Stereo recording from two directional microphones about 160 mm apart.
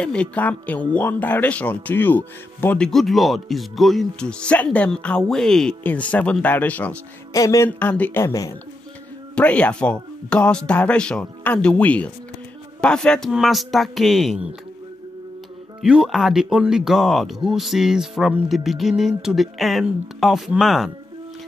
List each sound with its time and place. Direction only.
0.0 s speech: 5° left (ahead or behind)
7.3 s music: 20° left (ahead or behind)
7.9 s speech: 10° left (ahead or behind)
9.3 s speech: 10° left (ahead or behind)
15.8 s speech: 5° right (ahead or behind)